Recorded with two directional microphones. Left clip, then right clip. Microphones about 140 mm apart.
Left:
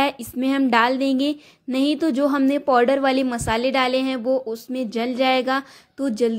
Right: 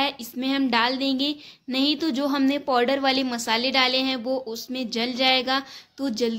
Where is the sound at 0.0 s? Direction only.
50° left (ahead or behind).